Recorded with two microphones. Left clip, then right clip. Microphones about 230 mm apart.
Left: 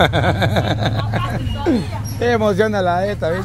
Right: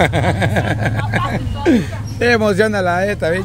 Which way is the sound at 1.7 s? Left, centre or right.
Centre.